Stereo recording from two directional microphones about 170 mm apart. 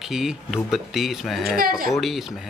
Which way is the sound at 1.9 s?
Centre (ahead or behind).